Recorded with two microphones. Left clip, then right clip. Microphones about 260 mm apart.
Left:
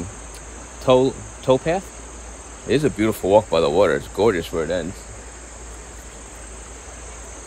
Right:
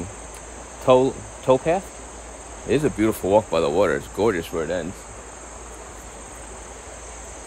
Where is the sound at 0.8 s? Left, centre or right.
Centre.